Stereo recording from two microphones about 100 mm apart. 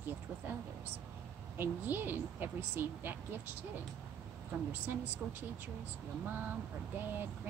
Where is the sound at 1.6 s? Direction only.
20° right (ahead or behind).